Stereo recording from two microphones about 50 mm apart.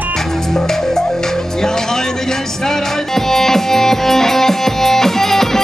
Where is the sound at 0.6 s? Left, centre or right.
Centre.